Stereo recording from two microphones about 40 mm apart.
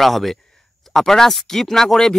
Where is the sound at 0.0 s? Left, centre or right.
Centre.